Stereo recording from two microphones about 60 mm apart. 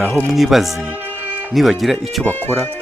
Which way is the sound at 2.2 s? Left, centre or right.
Left.